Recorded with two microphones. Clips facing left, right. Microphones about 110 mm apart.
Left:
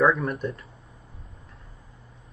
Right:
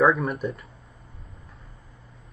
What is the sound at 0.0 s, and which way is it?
Speech, centre (ahead or behind).